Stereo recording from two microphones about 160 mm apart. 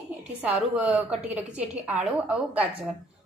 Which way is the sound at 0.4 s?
10° right (ahead or behind).